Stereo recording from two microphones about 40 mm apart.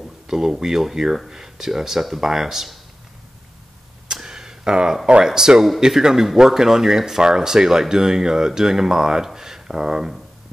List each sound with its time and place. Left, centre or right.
0.0 s speech: centre
4.1 s a sound: centre
5.0 s speech: centre